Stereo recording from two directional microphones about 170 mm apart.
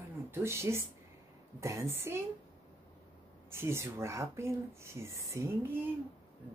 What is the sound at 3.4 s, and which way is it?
Speech, 15° right (ahead or behind).